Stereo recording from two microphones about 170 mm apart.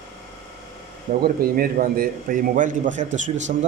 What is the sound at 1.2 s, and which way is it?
A man's voice, 60° right (ahead or behind).